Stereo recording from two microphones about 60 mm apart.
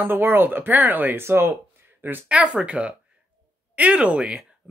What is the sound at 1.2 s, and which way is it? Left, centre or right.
Speech, right.